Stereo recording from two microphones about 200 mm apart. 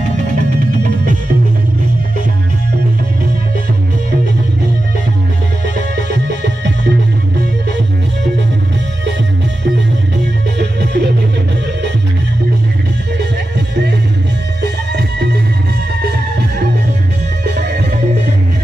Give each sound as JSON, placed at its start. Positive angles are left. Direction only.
{"t": 5.9, "sound": "music", "side_deg": -60}
{"t": 10.6, "sound": "music", "side_deg": -55}
{"t": 14.6, "sound": "music", "side_deg": -60}